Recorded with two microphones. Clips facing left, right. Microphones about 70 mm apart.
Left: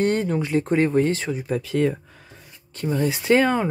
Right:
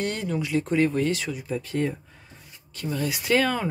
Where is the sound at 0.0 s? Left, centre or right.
Left.